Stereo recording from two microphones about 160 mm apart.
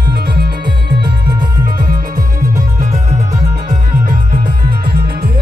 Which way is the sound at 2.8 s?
45° right (ahead or behind).